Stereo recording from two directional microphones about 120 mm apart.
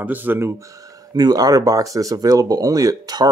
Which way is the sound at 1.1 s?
30° right (ahead or behind).